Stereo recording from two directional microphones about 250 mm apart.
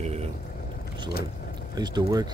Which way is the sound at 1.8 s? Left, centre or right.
Centre.